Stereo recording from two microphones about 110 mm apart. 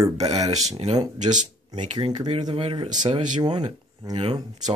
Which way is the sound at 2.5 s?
60° right (ahead or behind).